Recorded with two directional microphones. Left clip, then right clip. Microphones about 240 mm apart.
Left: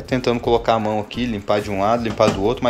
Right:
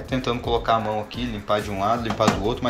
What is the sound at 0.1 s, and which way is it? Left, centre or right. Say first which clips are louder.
Speech: left 6 dB; left.